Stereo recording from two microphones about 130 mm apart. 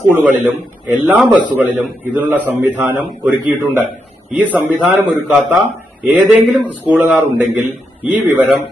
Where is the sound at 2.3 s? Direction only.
15° right (ahead or behind).